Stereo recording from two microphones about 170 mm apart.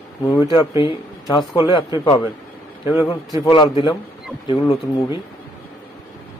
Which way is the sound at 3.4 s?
25° left (ahead or behind).